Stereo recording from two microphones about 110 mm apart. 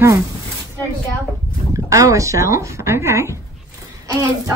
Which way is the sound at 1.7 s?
30° right (ahead or behind).